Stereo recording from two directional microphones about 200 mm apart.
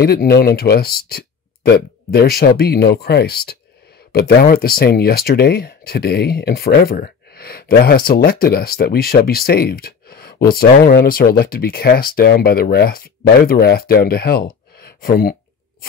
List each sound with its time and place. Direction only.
0.0 s speech: 50° left (ahead or behind)